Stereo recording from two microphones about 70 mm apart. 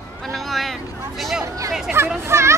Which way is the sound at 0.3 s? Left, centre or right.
Centre.